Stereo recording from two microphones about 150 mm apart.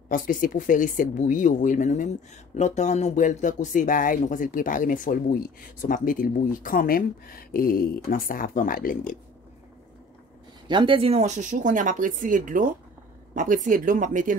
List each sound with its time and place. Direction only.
0.1 s speech: 65° left (ahead or behind)
10.7 s speech: 35° right (ahead or behind); by 14.3 s 60° right (ahead or behind)